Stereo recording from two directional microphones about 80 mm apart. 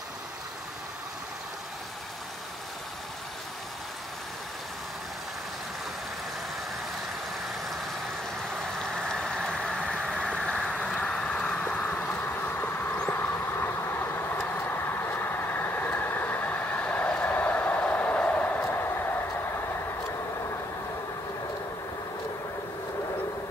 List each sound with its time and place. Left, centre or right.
8.8 s vehicle: centre; by 18.9 s left